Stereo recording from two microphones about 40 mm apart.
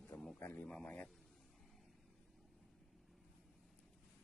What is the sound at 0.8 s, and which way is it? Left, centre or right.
Speech, left.